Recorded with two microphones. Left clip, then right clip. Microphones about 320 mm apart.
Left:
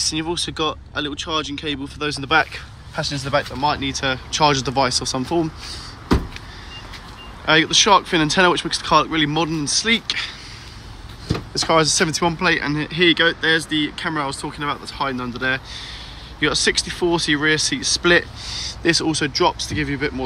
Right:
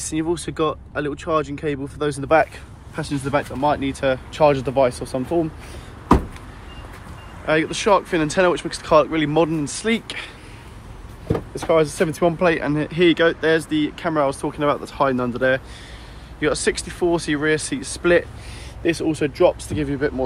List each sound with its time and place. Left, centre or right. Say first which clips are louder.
0.1 s speech: even; centre
7.4 s speech: left 4 dB; centre
11.5 s speech: left 2 dB; centre